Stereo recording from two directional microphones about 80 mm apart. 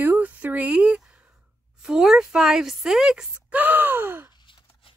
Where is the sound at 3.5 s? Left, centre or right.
Right.